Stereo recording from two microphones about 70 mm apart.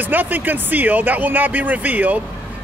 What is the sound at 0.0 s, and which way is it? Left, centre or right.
A man's voice, right.